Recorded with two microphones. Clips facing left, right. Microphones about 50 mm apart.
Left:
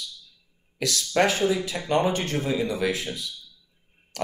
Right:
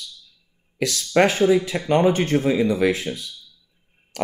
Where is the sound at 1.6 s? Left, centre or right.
Right.